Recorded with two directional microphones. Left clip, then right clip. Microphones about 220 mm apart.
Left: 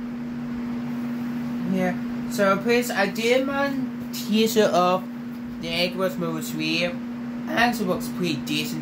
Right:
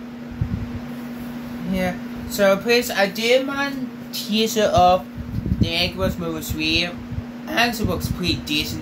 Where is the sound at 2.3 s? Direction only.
5° right (ahead or behind).